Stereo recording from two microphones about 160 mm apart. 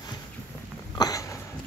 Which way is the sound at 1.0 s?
20° left (ahead or behind).